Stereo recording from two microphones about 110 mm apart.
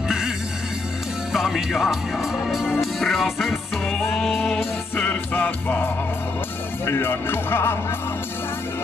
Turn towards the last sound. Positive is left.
turn(degrees=20)  # may be behind; listen again after turning